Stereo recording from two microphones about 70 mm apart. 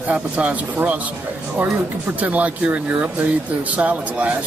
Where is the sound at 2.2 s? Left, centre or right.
Right.